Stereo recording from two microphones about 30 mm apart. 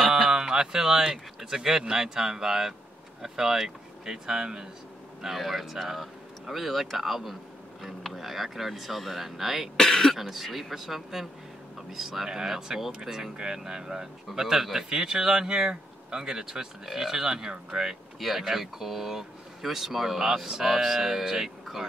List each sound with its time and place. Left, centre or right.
0.0 s speech: centre
5.3 s speech: centre
9.8 s speech: left
10.1 s speech: centre; by 17.8 s right
18.4 s speech: centre